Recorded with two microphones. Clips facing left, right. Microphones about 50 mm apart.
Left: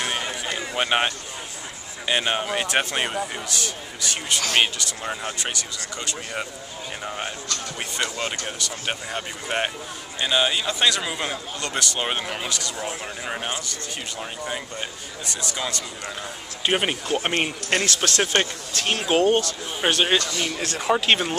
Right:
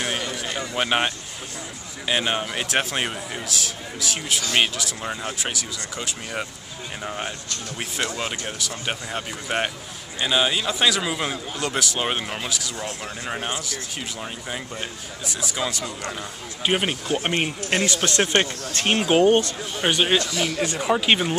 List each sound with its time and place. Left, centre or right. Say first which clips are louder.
0.2 s run: even; centre
2.0 s a man's voice: even; centre
12.7 s speech: left 1 dB; centre
13.3 s a man's voice: right 1 dB; centre
17.8 s speech: right 1 dB; centre
18.8 s speech: right 3 dB; right
19.0 s a man's voice: right 2 dB; centre